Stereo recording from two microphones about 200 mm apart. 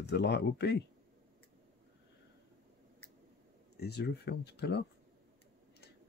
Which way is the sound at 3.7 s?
55° left (ahead or behind).